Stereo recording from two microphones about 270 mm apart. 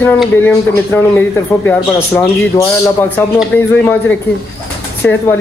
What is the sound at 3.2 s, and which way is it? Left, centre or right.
A man's voice, centre.